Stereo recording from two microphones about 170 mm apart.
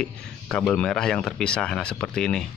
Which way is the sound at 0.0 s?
5° left (ahead or behind).